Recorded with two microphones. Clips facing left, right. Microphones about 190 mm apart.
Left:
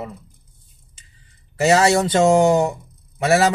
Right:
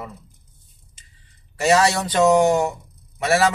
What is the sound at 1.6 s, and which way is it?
Speech, 25° left (ahead or behind).